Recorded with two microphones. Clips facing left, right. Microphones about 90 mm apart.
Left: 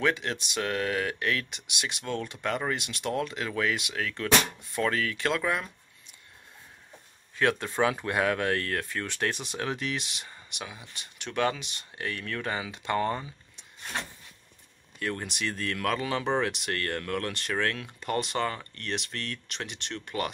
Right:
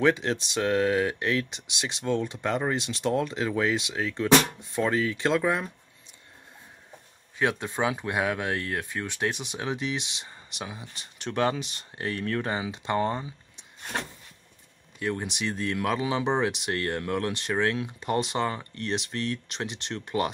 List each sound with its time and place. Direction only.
0.0 s speech: 30° right (ahead or behind)
7.3 s speech: 15° right (ahead or behind)
15.0 s speech: 15° right (ahead or behind)